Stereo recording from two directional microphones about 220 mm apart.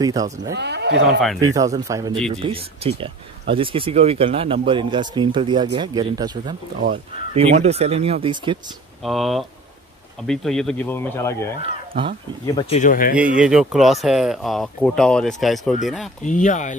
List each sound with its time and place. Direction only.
0.0 s speech: 15° right (ahead or behind)
0.6 s speech: 50° right (ahead or behind)
1.4 s speech: 15° right (ahead or behind)
2.4 s speech: 25° right (ahead or behind)
6.8 s speech: 30° right (ahead or behind)
9.0 s speech: centre (ahead or behind)
12.5 s speech: 30° left (ahead or behind)
13.1 s speech: 5° right (ahead or behind)
16.3 s speech: 35° left (ahead or behind)